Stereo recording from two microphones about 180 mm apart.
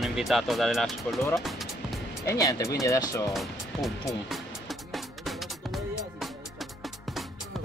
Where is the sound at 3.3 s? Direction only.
Centre (ahead or behind).